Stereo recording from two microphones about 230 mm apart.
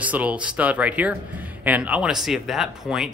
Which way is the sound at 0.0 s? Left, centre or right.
Centre.